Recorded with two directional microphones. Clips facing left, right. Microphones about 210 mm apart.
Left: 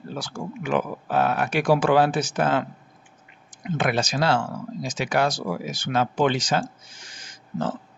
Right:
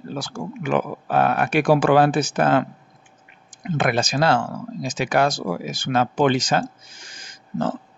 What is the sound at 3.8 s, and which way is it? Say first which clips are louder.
Speech: right 3 dB; 55° right (ahead or behind).